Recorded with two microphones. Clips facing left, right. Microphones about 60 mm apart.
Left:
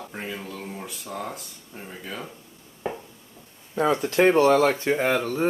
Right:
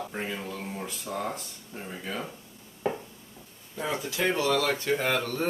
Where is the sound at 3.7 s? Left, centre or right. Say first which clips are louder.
Left 10 dB; left.